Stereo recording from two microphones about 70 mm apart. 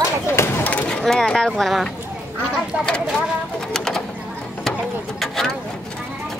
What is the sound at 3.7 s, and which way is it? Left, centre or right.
Bird, centre.